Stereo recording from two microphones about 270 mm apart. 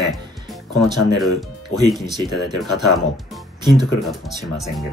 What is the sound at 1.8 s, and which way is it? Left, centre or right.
Speech, centre.